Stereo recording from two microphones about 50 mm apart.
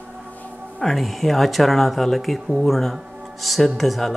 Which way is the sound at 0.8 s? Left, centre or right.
Centre.